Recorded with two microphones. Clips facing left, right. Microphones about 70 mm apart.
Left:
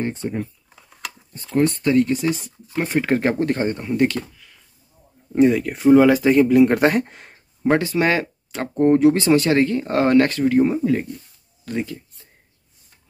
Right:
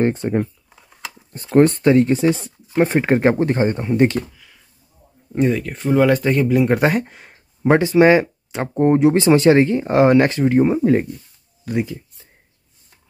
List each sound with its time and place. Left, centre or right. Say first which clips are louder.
0.0 s speech: right 7 dB; right
1.8 s speech: right 4 dB; right
5.3 s speech: left 3 dB; centre
7.7 s speech: right 7 dB; right
11.6 s a sound: right 4 dB; centre